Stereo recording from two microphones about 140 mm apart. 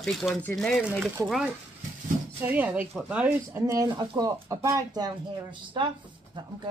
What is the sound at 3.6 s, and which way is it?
Speech, 25° right (ahead or behind).